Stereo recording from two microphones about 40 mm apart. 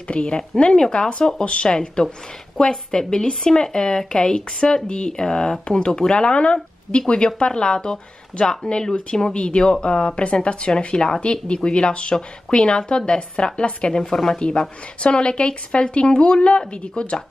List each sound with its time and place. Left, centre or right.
0.1 s speech: left
2.5 s a woman's voice: centre
2.9 s speech: centre
13.9 s a woman's voice: centre; by 17.2 s left